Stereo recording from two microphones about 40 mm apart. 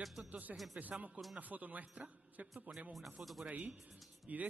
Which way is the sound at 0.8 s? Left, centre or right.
Right.